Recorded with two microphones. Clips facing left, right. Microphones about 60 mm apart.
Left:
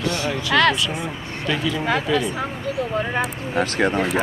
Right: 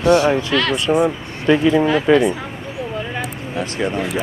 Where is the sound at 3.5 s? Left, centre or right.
Left.